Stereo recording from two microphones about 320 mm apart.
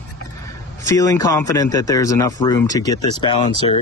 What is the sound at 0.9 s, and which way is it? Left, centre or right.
Speech, centre.